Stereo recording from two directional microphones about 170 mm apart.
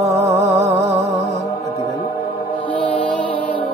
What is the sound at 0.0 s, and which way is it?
Music, 15° right (ahead or behind).